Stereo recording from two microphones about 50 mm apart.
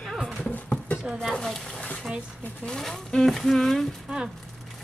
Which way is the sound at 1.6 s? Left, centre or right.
Centre.